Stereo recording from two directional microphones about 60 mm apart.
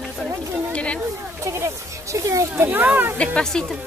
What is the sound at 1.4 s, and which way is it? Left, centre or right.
Speech, right.